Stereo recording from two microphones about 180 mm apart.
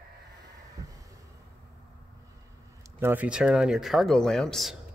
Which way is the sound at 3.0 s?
10° right (ahead or behind).